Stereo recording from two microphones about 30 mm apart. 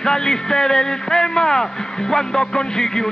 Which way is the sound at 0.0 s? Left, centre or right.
Centre.